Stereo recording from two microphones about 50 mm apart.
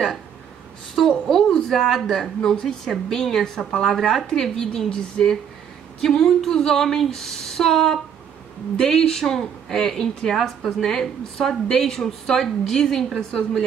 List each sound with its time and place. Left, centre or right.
1.0 s a woman's voice: centre